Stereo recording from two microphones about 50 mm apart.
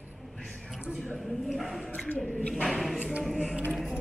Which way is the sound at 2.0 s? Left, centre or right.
Left.